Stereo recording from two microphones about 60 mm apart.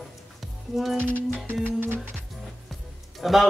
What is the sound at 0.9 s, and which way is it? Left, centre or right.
Music, right.